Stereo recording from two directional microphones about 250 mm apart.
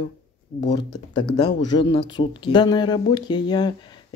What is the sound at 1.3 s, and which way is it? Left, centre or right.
Speech, left.